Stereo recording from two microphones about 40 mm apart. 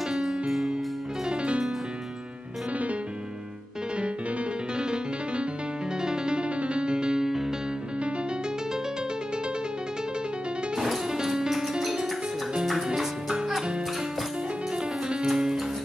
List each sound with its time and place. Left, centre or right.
0.1 s music: centre
1.3 s music: right
4.7 s music: right
10.8 s music: centre
15.1 s music: centre